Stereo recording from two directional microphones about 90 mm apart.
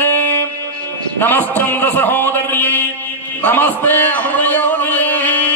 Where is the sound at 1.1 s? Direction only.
20° left (ahead or behind).